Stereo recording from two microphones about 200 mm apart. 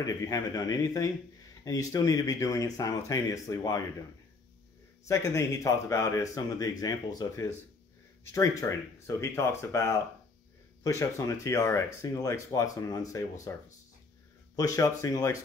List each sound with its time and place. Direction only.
0.0 s speech: 15° left (ahead or behind)
5.0 s speech: 15° left (ahead or behind)